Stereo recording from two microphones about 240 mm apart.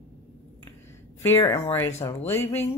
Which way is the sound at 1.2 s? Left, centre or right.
Centre.